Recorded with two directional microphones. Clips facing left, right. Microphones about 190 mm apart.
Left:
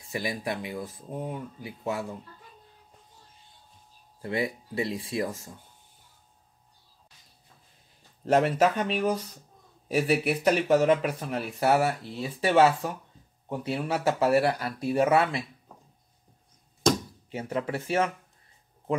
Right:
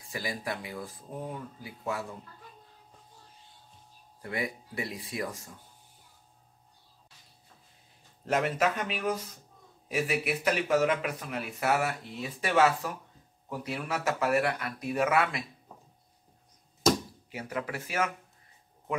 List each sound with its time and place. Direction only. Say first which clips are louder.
0.1 s speech: left 4 dB; 20° left (ahead or behind)
4.2 s speech: left 5 dB; 25° left (ahead or behind)
8.3 s speech: left 5 dB; 30° left (ahead or behind)
9.8 s speech: left 5 dB; 35° left (ahead or behind)
17.3 s speech: left 5 dB; 30° left (ahead or behind)